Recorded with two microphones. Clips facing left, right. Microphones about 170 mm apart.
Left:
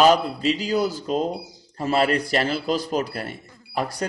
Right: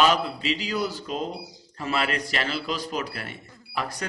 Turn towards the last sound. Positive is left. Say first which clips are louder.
# left 5 dB
turn(degrees=40)  # may be behind; listen again after turning